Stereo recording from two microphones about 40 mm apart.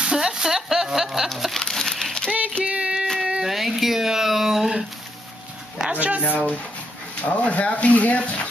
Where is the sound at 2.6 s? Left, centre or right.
Right.